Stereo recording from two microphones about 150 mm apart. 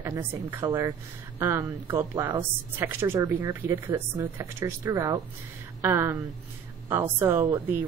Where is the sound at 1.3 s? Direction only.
15° right (ahead or behind).